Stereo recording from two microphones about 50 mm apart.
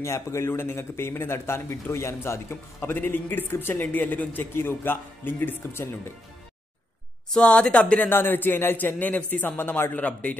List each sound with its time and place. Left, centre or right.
0.0 s a man's voice: left
0.5 s a man's voice: left
5.7 s speech: left
7.3 s speech: left
8.1 s a man's voice: left
8.7 s a man's voice: left
9.6 s a man's voice: left
9.9 s speech: left